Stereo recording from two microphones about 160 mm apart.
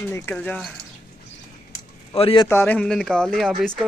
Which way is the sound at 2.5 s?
15° left (ahead or behind).